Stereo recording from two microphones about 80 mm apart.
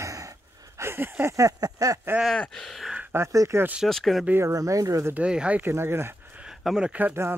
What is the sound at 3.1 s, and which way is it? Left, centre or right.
Speech, right.